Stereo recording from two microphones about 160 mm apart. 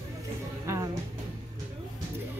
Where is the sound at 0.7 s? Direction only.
20° right (ahead or behind).